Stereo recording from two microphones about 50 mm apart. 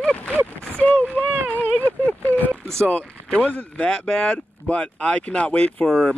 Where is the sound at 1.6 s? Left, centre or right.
Left.